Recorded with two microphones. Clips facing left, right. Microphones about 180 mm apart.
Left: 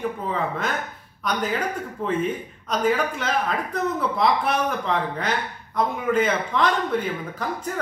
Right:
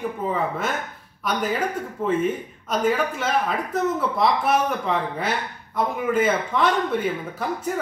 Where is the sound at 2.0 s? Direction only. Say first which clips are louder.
Right 2 dB; 5° right (ahead or behind).